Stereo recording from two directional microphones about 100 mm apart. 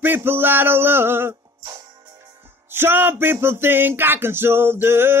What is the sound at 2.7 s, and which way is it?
Music, 20° right (ahead or behind).